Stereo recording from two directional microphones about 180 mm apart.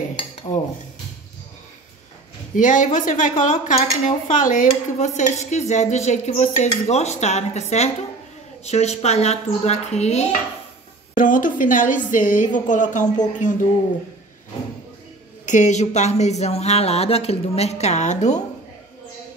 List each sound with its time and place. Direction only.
0.1 s cutlery: 30° left (ahead or behind)
2.5 s a woman's voice: 45° left (ahead or behind)
4.6 s dishes: 40° left (ahead or behind)
11.1 s a woman's voice: 45° left (ahead or behind)
15.4 s dishes: 40° left (ahead or behind)